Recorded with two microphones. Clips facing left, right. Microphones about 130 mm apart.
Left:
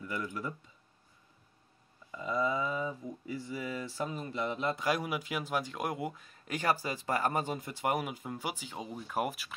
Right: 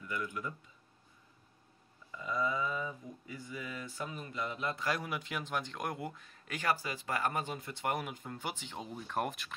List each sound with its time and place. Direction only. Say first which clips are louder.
0.0 s speech: left 2 dB; 30° left (ahead or behind)
2.0 s speech: left 3 dB; 25° left (ahead or behind)
4.8 s speech: left 4 dB; 10° left (ahead or behind)
6.6 s speech: left 2 dB; 30° left (ahead or behind)
7.5 s speech: left 4 dB; 10° left (ahead or behind)